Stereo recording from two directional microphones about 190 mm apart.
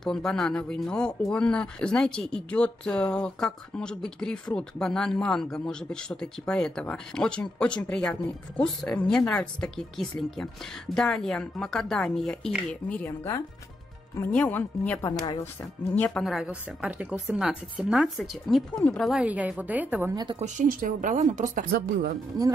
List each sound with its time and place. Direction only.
0.0 s speech: 5° left (ahead or behind); by 15.4 s 20° left (ahead or behind)
15.9 s speech: 5° left (ahead or behind); by 20.3 s 20° right (ahead or behind)
20.3 s speech: 40° right (ahead or behind)